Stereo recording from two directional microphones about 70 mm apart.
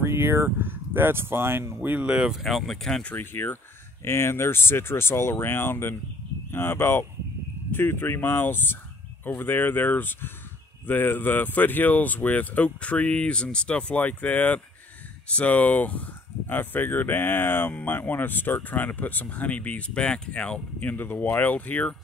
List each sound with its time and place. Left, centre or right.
0.0 s speech: right
1.8 s speech: right
2.1 s speech: centre
2.4 s speech: centre
3.2 s speech: left